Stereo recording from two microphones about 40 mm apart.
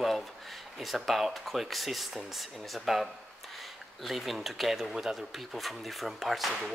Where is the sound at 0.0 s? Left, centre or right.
Centre.